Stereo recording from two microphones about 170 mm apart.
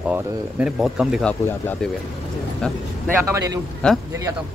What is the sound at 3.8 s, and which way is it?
Speech, 5° left (ahead or behind).